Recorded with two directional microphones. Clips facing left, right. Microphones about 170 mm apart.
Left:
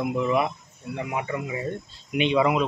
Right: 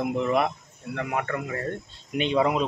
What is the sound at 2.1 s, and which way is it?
Speech, 40° right (ahead or behind).